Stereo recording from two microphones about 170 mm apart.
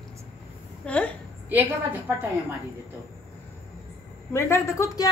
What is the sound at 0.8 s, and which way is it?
Speech, 5° left (ahead or behind).